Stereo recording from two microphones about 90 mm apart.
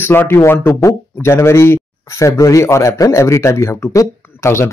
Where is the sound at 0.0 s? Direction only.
25° left (ahead or behind).